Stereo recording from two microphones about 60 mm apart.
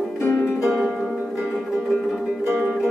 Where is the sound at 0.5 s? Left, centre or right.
Centre.